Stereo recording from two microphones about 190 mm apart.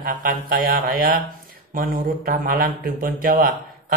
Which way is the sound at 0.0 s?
50° right (ahead or behind).